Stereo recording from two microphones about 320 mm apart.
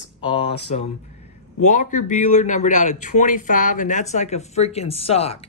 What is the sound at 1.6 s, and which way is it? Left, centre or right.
A man's voice, left.